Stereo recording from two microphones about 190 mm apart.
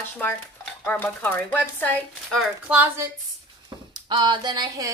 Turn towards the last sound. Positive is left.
turn(degrees=-20)  # may be behind; listen again after turning